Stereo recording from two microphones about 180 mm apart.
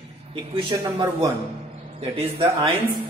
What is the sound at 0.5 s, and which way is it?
A man's voice, 25° right (ahead or behind).